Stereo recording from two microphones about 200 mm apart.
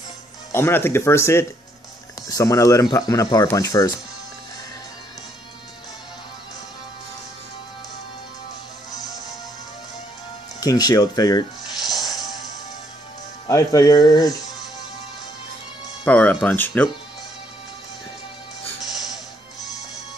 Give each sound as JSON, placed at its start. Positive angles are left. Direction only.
{"t": 0.5, "sound": "speech", "side_deg": 10}
{"t": 10.6, "sound": "speech", "side_deg": 20}
{"t": 12.1, "sound": "music", "side_deg": 20}
{"t": 13.5, "sound": "speech", "side_deg": 15}
{"t": 16.1, "sound": "speech", "side_deg": 5}